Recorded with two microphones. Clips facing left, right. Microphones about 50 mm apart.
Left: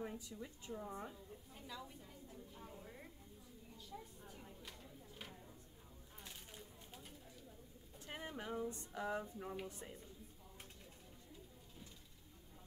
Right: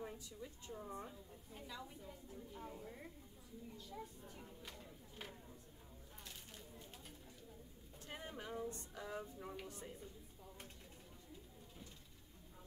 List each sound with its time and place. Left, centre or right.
0.0 s a woman's voice: centre
1.5 s a woman's voice: centre
8.1 s a woman's voice: centre
9.4 s speech: centre